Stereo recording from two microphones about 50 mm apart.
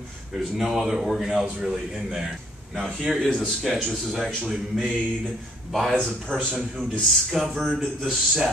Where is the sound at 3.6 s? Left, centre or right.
Centre.